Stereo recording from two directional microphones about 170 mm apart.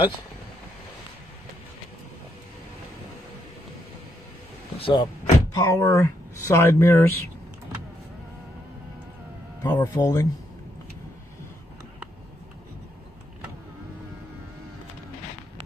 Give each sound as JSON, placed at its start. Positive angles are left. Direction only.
{"t": 4.7, "sound": "speech", "side_deg": 35}
{"t": 5.5, "sound": "speech", "side_deg": 15}
{"t": 9.6, "sound": "speech", "side_deg": 20}